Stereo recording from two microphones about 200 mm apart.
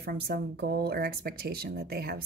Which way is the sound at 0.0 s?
50° right (ahead or behind).